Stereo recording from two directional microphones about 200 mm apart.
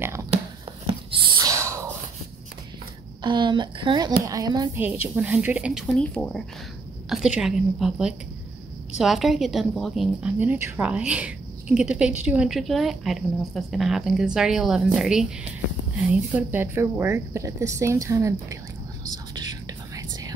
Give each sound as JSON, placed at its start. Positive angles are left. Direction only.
{"t": 0.0, "sound": "speech", "side_deg": -15}
{"t": 0.8, "sound": "whispering", "side_deg": -25}
{"t": 3.2, "sound": "a woman's voice", "side_deg": -25}
{"t": 20.0, "sound": "whispering", "side_deg": -20}